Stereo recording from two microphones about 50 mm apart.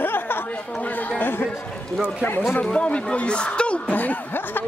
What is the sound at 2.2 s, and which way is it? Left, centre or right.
Speech, left.